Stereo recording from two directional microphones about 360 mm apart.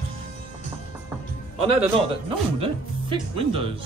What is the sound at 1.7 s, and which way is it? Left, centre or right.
Speech, centre.